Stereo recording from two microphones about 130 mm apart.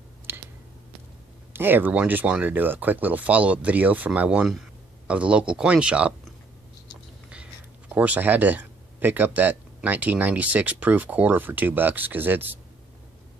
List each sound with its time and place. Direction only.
0.3 s a sound: 15° right (ahead or behind)
1.5 s speech: 15° right (ahead or behind)
7.9 s speech: 10° right (ahead or behind)